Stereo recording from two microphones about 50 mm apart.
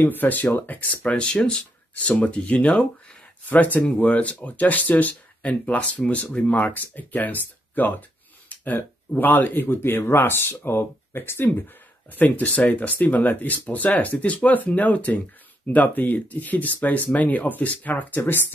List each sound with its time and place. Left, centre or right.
0.0 s speech: left
1.1 s speech: centre; by 11.5 s left
11.5 s speech: left